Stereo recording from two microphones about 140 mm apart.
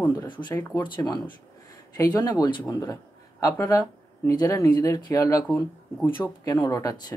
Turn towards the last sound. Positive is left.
turn(degrees=25)  # may be behind; listen again after turning